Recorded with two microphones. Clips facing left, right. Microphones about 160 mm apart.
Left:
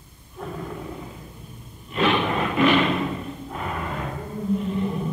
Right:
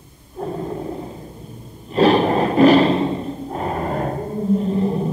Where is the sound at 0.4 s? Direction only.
35° right (ahead or behind).